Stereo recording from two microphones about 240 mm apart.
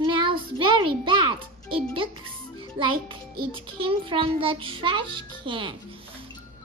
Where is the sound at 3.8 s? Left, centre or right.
Right.